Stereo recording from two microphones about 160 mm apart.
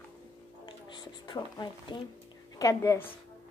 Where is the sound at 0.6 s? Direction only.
30° left (ahead or behind).